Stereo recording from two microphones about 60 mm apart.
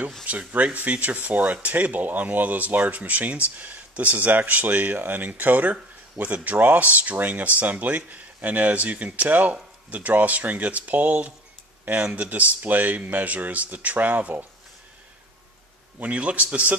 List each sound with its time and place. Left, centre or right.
0.3 s speech: right
16.0 s speech: right